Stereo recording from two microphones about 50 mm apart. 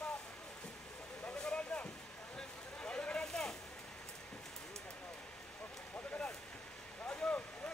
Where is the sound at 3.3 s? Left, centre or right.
Centre.